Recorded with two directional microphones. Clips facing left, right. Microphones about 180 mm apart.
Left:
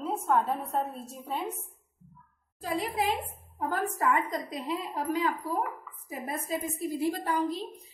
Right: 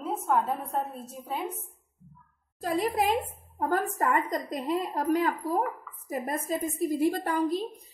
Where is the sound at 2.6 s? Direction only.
45° right (ahead or behind).